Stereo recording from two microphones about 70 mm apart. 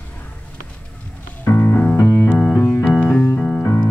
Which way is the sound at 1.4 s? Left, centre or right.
Left.